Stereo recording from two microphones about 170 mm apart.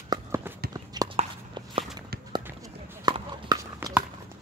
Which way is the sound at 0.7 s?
20° right (ahead or behind).